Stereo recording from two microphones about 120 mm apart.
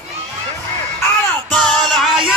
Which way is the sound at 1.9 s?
Centre (ahead or behind).